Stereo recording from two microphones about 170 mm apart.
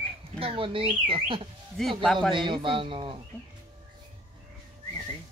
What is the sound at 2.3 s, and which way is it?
Speech, 30° right (ahead or behind).